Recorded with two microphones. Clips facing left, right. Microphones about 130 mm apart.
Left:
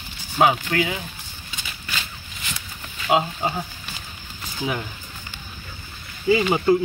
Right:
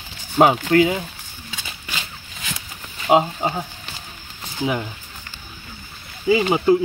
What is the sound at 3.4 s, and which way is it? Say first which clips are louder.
Speech: right 2 dB; 20° right (ahead or behind).